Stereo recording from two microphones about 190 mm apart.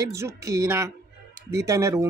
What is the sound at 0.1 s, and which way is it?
Speech, 15° right (ahead or behind).